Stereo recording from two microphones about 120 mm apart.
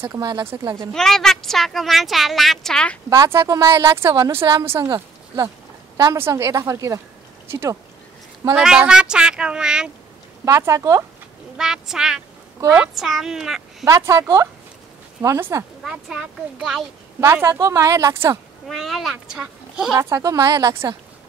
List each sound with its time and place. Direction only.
0.2 s speech: 35° right (ahead or behind)
0.9 s a woman's voice: 5° left (ahead or behind)
3.1 s a woman's voice: 25° right (ahead or behind)
8.5 s speech: 5° right (ahead or behind)
10.4 s a woman's voice: 25° right (ahead or behind)
11.5 s a woman's voice: 5° right (ahead or behind)
12.5 s a woman's voice: 20° right (ahead or behind)
12.8 s a woman's voice: centre (ahead or behind)
13.8 s a woman's voice: 25° right (ahead or behind)
15.8 s a woman's voice: 5° right (ahead or behind)
17.2 s a woman's voice: 25° right (ahead or behind)
18.7 s a woman's voice: centre (ahead or behind)
20.0 s a woman's voice: 25° right (ahead or behind)